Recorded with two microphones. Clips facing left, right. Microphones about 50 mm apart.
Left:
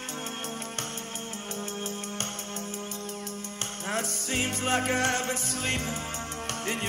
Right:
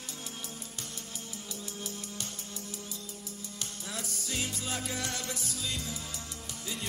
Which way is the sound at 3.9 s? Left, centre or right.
Left.